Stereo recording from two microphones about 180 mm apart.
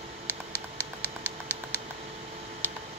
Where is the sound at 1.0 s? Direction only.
10° left (ahead or behind).